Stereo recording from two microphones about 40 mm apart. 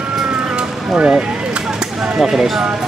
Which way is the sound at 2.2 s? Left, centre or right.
Centre.